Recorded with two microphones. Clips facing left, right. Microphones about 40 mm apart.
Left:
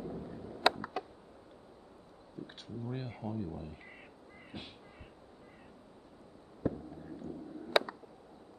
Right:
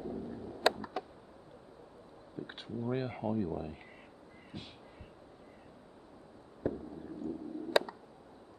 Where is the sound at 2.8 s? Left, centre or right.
Right.